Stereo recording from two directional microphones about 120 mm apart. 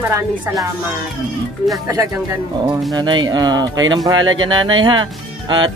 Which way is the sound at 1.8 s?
25° right (ahead or behind).